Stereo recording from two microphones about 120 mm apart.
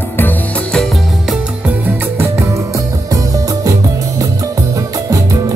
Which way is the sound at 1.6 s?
15° right (ahead or behind).